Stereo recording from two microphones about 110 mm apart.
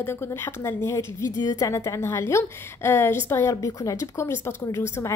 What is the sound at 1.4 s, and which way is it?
A woman's voice, 35° left (ahead or behind).